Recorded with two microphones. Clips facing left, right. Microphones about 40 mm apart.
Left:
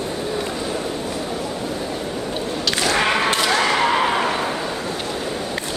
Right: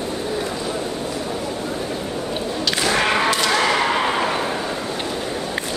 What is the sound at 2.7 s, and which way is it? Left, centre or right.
Thump, centre.